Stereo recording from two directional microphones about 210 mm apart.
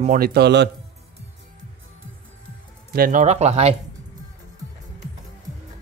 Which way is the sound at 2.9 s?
40° right (ahead or behind).